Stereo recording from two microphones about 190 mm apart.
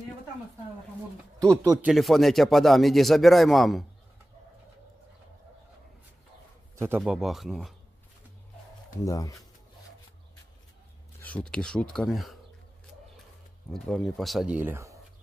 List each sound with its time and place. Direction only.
1.6 s speech: 15° right (ahead or behind)
1.9 s a man's voice: centre (ahead or behind)
7.0 s a man's voice: centre (ahead or behind)
9.0 s speech: 15° left (ahead or behind)
11.1 s a man's voice: 5° left (ahead or behind)
13.7 s a man's voice: centre (ahead or behind); by 15.0 s 15° right (ahead or behind)